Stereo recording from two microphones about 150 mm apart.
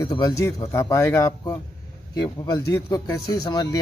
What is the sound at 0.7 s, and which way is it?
Speech, 15° left (ahead or behind).